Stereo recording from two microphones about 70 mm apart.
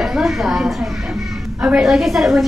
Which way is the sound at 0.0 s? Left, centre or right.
Centre.